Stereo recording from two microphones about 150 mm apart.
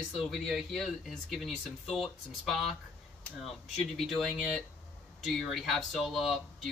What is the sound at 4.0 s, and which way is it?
Speech, centre (ahead or behind).